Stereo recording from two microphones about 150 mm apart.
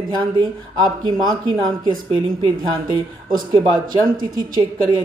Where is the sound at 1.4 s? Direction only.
30° right (ahead or behind).